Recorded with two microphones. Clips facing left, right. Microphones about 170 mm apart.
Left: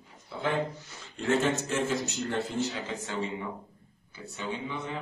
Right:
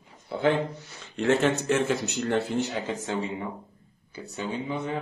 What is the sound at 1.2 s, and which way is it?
Speech, 65° right (ahead or behind).